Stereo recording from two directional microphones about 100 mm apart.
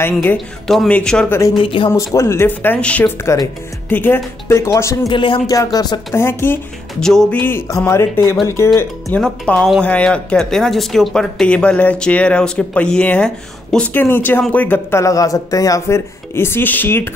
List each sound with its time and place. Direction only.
0.0 s speech: 20° left (ahead or behind)
1.6 s music: 60° left (ahead or behind)
2.1 s speech: 25° left (ahead or behind)
5.1 s music: 55° left (ahead or behind)
5.5 s a sound: 40° left (ahead or behind)
6.1 s speech: 25° left (ahead or behind)
7.0 s speech: 5° left (ahead or behind)
7.3 s speech: 20° left (ahead or behind)
9.1 s speech: 15° left (ahead or behind)
14.0 s speech: 20° left (ahead or behind)
15.0 s speech: 35° left (ahead or behind)